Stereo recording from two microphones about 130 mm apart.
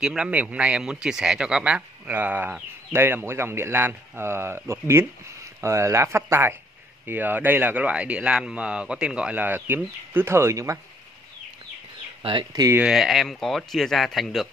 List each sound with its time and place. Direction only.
0.0 s speech: 5° right (ahead or behind); by 10.8 s 20° right (ahead or behind)
12.2 s speech: 40° right (ahead or behind)
12.8 s speech: 5° right (ahead or behind)